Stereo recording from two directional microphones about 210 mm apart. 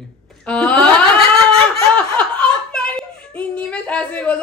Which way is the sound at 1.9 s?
5° left (ahead or behind).